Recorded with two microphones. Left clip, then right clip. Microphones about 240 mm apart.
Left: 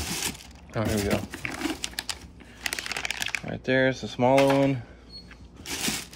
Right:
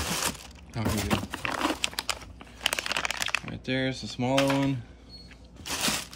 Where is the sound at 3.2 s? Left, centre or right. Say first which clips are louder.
Even; centre.